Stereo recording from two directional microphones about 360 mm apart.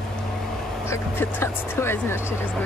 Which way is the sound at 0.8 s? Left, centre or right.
Centre.